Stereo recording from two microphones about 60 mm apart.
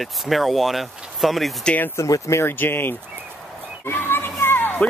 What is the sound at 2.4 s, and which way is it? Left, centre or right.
Speech, left.